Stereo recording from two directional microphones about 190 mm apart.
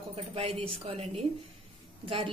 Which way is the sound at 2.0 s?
30° right (ahead or behind).